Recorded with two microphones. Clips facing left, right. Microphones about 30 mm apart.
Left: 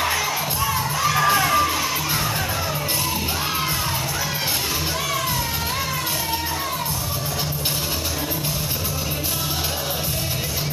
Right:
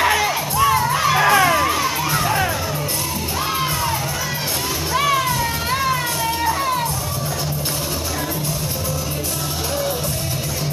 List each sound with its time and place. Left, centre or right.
0.2 s crowd: centre
4.9 s music: right